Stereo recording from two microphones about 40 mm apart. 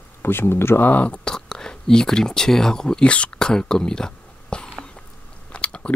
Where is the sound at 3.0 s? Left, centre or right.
Left.